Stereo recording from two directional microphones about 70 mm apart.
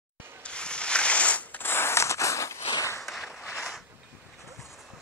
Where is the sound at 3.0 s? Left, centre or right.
Centre.